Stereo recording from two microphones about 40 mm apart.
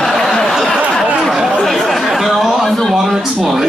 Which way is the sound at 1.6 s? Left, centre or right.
Centre.